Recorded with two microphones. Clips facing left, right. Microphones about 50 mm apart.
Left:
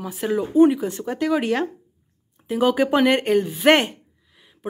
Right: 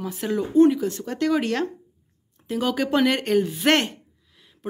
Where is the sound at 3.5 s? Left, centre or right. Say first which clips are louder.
Left 4 dB; centre.